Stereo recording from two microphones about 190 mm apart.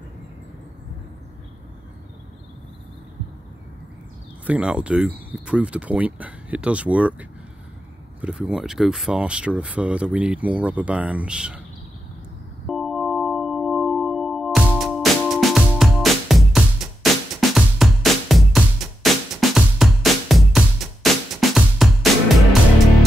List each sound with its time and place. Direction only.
4.5 s speech: 5° right (ahead or behind)
12.6 s music: centre (ahead or behind)